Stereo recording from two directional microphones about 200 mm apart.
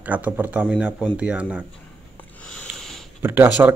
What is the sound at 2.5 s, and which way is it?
Sniff, 5° left (ahead or behind).